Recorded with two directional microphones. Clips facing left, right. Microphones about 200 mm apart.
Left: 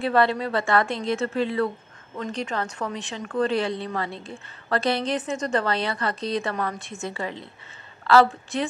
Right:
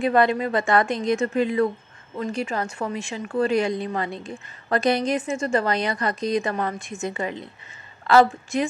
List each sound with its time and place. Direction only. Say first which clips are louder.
0.0 s a woman's voice: right 2 dB; 15° right (ahead or behind)